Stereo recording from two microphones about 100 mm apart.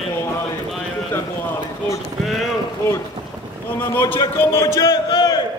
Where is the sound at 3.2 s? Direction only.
45° right (ahead or behind).